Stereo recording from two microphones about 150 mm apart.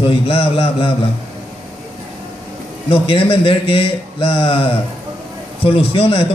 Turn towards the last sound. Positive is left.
turn(degrees=40)  # may be behind; listen again after turning